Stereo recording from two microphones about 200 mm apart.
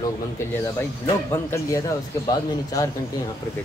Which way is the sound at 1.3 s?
15° left (ahead or behind).